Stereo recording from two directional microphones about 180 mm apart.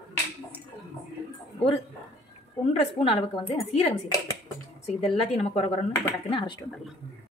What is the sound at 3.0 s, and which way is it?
Speech, 30° left (ahead or behind).